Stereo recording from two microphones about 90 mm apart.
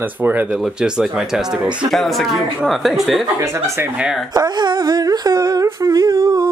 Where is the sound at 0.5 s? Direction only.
5° right (ahead or behind).